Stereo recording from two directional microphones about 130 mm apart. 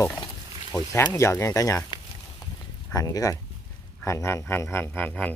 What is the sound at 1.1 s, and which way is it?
Speech, 20° left (ahead or behind).